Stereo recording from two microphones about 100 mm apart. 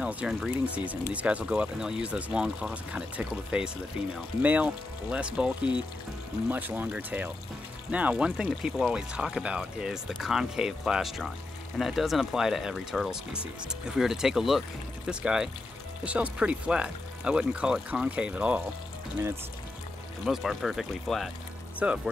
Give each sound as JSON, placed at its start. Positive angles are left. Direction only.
{"t": 0.0, "sound": "speech", "side_deg": -10}
{"t": 6.5, "sound": "speech", "side_deg": -20}
{"t": 20.2, "sound": "speech", "side_deg": 0}